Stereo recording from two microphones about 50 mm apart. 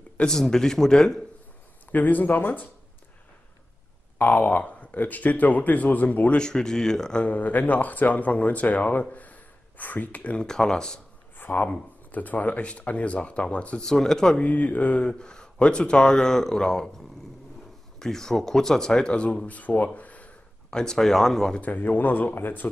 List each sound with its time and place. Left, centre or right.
0.2 s speech: centre
1.9 s speech: left
4.2 s speech: left
6.4 s speech: centre
7.2 s speech: left
10.4 s speech: centre
11.3 s a sound: left
12.1 s speech: left
13.8 s speech: centre
14.4 s speech: left
15.1 s speech: centre
20.7 s speech: centre
21.5 s speech: left